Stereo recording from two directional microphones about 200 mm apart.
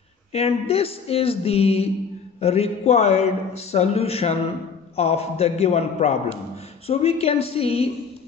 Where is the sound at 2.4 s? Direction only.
30° left (ahead or behind).